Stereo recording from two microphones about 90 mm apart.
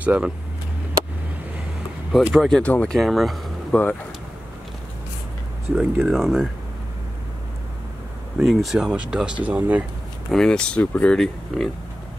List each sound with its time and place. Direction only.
0.0 s speech: 15° right (ahead or behind)
2.1 s speech: 5° left (ahead or behind)
2.6 s speech: 15° left (ahead or behind)
3.0 s speech: centre (ahead or behind)
3.7 s speech: 10° left (ahead or behind)
6.0 s speech: 5° right (ahead or behind)
8.4 s speech: centre (ahead or behind); by 9.8 s 15° right (ahead or behind)
10.3 s speech: 10° left (ahead or behind)
11.1 s speech: 5° left (ahead or behind)